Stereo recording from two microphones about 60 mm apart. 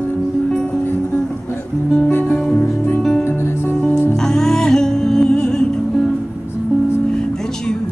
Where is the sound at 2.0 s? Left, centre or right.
Left.